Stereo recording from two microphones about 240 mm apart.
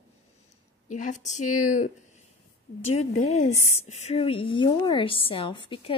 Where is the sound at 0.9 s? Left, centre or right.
Left.